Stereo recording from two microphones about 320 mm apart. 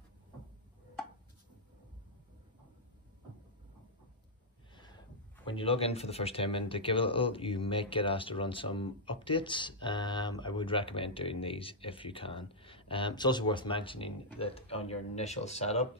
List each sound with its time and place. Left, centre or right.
4.7 s speech: centre